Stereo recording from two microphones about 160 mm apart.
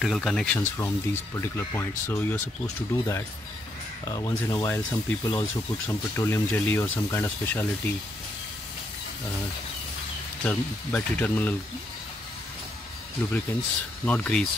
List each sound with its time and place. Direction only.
0.0 s speech: centre (ahead or behind)
0.6 s speech: 20° left (ahead or behind)
10.4 s speech: 10° left (ahead or behind)
14.0 s speech: 10° left (ahead or behind)